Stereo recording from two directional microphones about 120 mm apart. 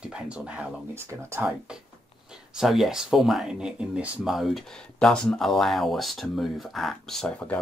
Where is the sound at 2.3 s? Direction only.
5° right (ahead or behind).